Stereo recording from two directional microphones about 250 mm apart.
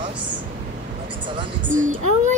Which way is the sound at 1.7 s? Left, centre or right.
Right.